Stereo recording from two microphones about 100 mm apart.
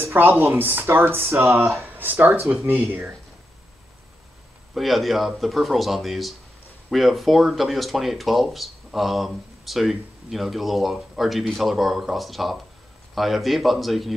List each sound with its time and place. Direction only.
0.0 s speech: 20° right (ahead or behind)
4.7 s speech: centre (ahead or behind)